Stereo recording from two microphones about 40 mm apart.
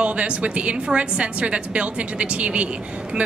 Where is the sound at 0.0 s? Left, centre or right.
Right.